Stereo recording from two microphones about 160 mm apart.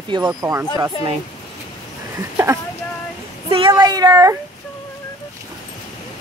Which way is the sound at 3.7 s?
25° right (ahead or behind).